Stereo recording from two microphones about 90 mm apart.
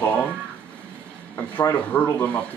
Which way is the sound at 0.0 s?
15° left (ahead or behind).